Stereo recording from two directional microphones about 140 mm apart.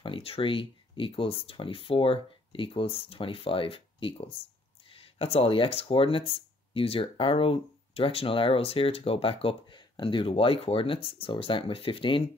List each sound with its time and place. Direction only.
0.0 s speech: 40° left (ahead or behind)